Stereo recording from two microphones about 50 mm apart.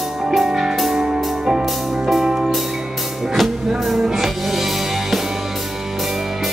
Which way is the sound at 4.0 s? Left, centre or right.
Centre.